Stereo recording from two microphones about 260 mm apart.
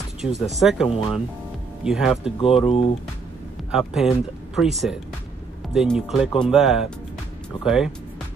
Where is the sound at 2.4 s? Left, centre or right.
Left.